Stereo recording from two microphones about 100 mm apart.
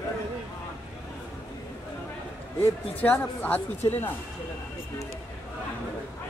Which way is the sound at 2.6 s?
15° left (ahead or behind).